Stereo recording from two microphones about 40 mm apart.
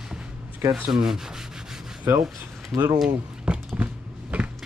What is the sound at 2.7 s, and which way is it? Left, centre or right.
Speech, centre.